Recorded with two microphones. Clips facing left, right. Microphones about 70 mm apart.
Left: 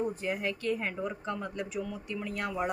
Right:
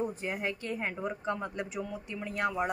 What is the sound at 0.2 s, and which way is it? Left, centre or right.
A woman's voice, centre.